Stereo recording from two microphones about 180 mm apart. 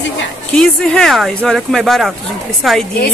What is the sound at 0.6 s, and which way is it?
Speech, centre (ahead or behind).